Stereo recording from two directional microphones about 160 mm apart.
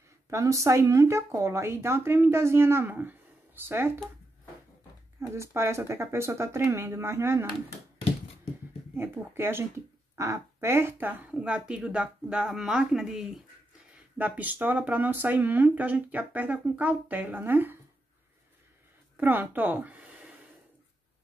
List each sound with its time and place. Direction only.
0.3 s speech: 20° right (ahead or behind)
5.2 s speech: 15° right (ahead or behind)
8.9 s speech: 15° right (ahead or behind)
19.1 s speech: 10° right (ahead or behind)